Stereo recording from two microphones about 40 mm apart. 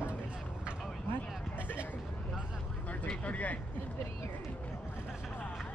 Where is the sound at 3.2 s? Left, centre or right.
Left.